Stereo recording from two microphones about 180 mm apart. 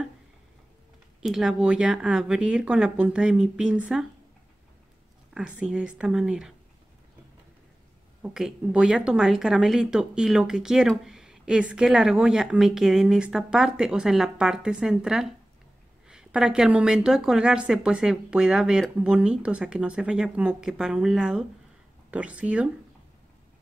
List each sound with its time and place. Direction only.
1.2 s a woman's voice: centre (ahead or behind)
5.6 s a woman's voice: 5° right (ahead or behind)
8.2 s a woman's voice: 5° right (ahead or behind)